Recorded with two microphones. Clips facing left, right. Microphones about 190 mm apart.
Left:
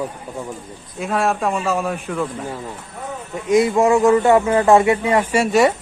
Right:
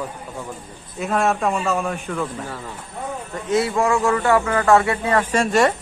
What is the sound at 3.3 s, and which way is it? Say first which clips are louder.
Speech: left 5 dB; 15° left (ahead or behind).